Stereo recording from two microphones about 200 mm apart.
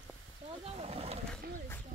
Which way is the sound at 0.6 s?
30° right (ahead or behind).